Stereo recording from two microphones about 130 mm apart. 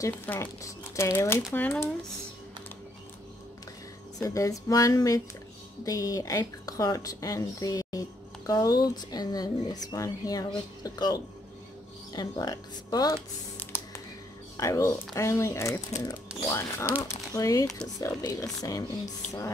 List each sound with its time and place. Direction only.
0.3 s speech: 20° left (ahead or behind)
4.2 s speech: 25° left (ahead or behind)
13.6 s music: 20° left (ahead or behind)
14.6 s speech: 25° left (ahead or behind)